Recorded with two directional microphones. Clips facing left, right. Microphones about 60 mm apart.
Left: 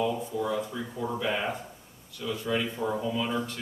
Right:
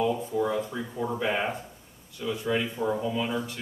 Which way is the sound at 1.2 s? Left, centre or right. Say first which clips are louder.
Right 2 dB; right.